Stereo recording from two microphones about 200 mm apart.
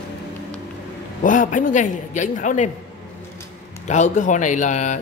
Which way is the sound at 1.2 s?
40° left (ahead or behind).